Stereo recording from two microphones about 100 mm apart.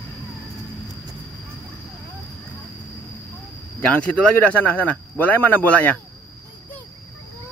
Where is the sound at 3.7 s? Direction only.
10° left (ahead or behind).